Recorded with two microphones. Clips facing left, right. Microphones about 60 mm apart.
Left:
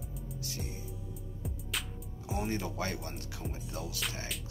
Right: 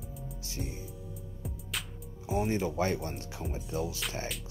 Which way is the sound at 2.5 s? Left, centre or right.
Right.